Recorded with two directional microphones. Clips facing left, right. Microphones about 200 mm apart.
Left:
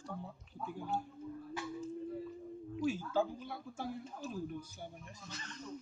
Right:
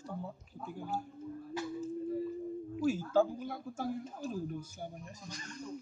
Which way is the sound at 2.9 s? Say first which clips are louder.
Right 6 dB; 45° right (ahead or behind).